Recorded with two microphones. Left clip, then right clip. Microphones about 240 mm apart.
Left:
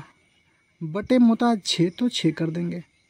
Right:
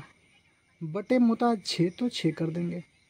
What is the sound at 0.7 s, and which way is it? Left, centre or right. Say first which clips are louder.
Speech: left 5 dB; left.